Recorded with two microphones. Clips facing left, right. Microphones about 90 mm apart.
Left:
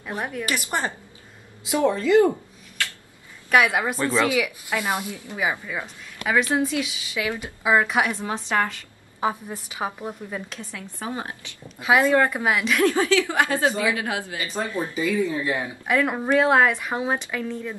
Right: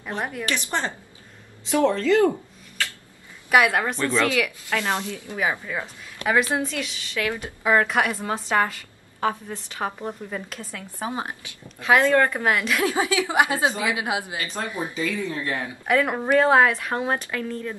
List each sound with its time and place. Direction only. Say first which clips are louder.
0.1 s a woman's voice: even; centre (ahead or behind)
0.7 s speech: even; 15° left (ahead or behind)
3.4 s a woman's voice: right 1 dB; centre (ahead or behind)
3.8 s speech: left 1 dB; 10° left (ahead or behind)
5.8 s a woman's voice: right 1 dB; 10° right (ahead or behind)
6.6 s a woman's voice: left 4 dB; 5° left (ahead or behind)
9.2 s speech: even; 10° left (ahead or behind)
11.0 s a woman's voice: right 2 dB; 20° right (ahead or behind)
11.8 s speech: even; 10° left (ahead or behind)
12.9 s a woman's voice: left 1 dB; 15° right (ahead or behind)
15.0 s speech: left 5 dB; 15° left (ahead or behind)
16.0 s a woman's voice: even; 5° right (ahead or behind)